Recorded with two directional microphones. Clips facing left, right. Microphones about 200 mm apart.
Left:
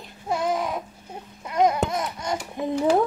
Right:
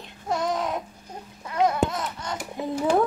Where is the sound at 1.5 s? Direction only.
20° left (ahead or behind).